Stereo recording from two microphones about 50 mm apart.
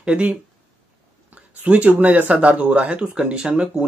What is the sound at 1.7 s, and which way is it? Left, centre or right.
Speech, right.